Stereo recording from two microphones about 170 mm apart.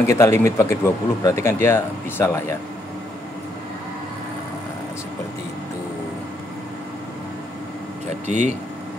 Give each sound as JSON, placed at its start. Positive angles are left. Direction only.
{"t": 0.1, "sound": "speech", "side_deg": 15}
{"t": 8.3, "sound": "speech", "side_deg": -45}